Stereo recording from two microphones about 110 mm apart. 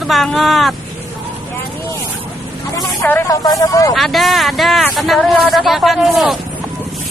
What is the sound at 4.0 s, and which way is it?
Speech, centre (ahead or behind).